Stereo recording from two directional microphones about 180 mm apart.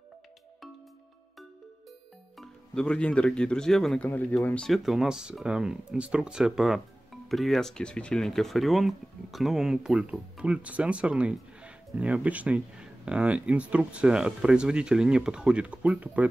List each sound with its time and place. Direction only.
2.3 s speech: 5° left (ahead or behind)